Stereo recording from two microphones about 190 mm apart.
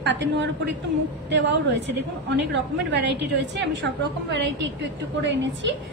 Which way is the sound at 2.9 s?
65° right (ahead or behind).